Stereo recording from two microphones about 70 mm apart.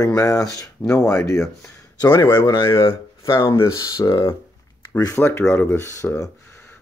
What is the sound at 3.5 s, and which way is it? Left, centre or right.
Speech, left.